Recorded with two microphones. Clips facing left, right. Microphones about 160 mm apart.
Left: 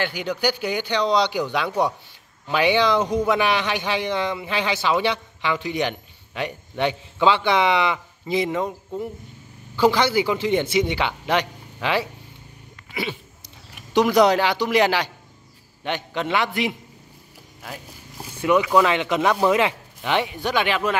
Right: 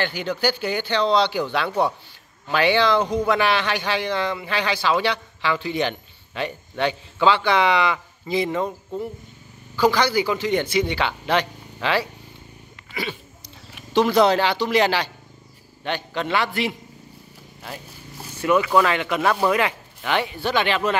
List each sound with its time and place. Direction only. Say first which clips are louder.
0.0 s a man's voice: even; 10° left (ahead or behind)
13.9 s speech: even; 15° left (ahead or behind)
18.4 s speech: left 1 dB; 15° left (ahead or behind)